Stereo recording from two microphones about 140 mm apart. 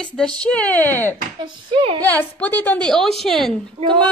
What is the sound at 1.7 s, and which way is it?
Speech, 35° right (ahead or behind).